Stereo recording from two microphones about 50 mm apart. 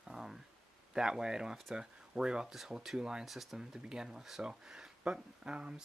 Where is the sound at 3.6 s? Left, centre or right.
Centre.